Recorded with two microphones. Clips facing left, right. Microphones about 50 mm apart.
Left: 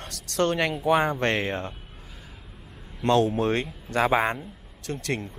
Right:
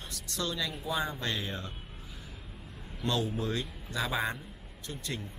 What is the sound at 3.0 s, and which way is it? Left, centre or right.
A man's voice, left.